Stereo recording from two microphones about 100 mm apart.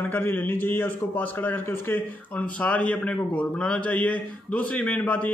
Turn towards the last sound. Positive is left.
turn(degrees=15)  # may be behind; listen again after turning